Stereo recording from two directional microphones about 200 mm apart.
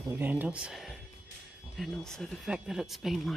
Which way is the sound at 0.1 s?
10° right (ahead or behind).